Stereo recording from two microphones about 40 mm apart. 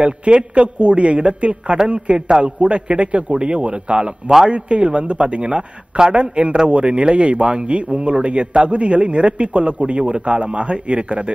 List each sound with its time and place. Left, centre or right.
0.0 s a man's voice: right